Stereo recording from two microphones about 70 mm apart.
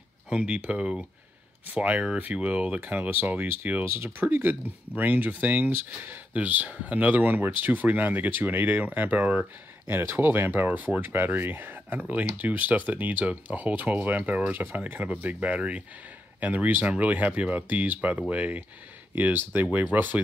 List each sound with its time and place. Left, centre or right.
0.3 s speech: centre
3.8 s speech: right; by 9.5 s centre
9.8 s speech: right